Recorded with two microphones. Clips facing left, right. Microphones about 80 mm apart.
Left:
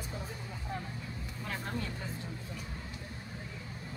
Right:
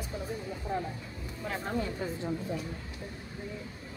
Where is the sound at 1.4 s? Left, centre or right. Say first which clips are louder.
Right 6 dB; centre.